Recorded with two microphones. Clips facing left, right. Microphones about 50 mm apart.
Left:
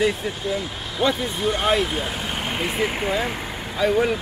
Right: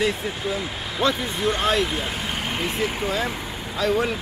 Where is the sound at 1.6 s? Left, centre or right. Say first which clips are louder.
Left 1 dB; centre.